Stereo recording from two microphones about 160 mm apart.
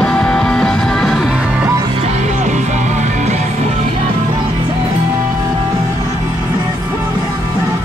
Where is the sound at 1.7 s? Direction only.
20° right (ahead or behind).